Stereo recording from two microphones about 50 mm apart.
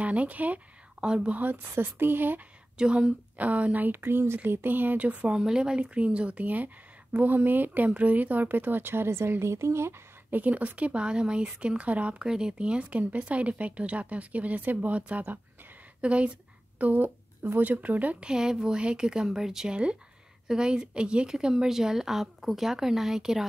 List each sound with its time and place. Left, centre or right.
0.0 s speech: right
1.0 s speech: centre
1.3 s speech: right
2.8 s speech: right
5.4 s speech: centre
5.8 s speech: right
10.3 s speech: right
12.2 s speech: centre
16.0 s a sound: right
17.6 s speech: right
18.2 s speech: centre
19.7 s speech: right